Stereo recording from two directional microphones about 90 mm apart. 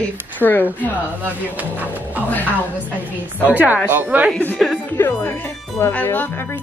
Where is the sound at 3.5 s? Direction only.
20° right (ahead or behind).